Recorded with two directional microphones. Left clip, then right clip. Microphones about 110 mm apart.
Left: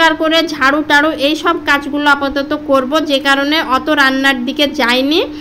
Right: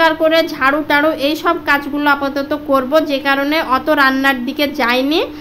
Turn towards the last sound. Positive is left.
turn(degrees=10)  # may be behind; listen again after turning